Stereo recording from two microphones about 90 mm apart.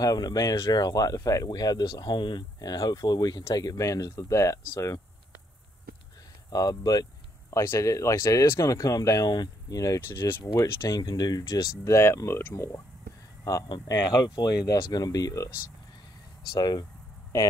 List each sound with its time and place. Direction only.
0.0 s speech: 45° left (ahead or behind)
6.5 s speech: 45° left (ahead or behind)
7.5 s speech: 30° left (ahead or behind)
10.1 s speech: 25° left (ahead or behind)
10.9 s speech: 50° left (ahead or behind)
11.8 s speech: 30° left (ahead or behind)
13.4 s a sound: 40° left (ahead or behind)
13.8 s speech: 45° left (ahead or behind)
16.5 s speech: 50° left (ahead or behind)